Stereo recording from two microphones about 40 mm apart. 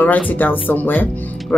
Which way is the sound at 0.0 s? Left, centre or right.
Left.